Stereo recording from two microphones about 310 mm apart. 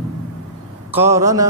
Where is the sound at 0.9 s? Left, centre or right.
Centre.